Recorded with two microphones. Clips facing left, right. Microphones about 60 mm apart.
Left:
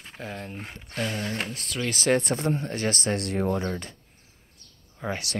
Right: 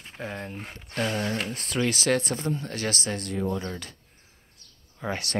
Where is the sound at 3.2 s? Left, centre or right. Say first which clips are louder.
Left 3 dB; left.